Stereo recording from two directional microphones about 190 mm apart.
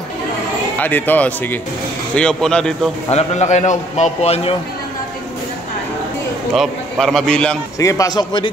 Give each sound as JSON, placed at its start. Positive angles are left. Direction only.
{"t": 0.7, "sound": "a man's voice", "side_deg": 10}
{"t": 3.1, "sound": "a man's voice", "side_deg": 35}
{"t": 6.5, "sound": "a man's voice", "side_deg": 0}
{"t": 7.8, "sound": "speech", "side_deg": 15}